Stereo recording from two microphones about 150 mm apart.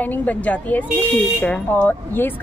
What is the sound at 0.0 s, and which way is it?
A woman's voice, 10° left (ahead or behind).